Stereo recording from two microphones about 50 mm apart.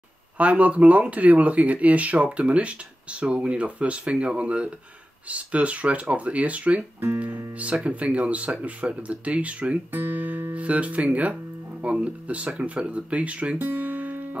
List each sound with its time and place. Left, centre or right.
0.4 s speech: right
9.9 s speech: right
10.5 s speech: right
13.6 s music: right